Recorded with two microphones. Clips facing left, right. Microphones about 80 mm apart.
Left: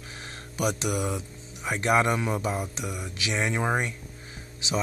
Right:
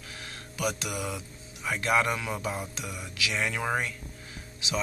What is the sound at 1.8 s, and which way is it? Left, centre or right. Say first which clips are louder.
Speech: left 3 dB; left.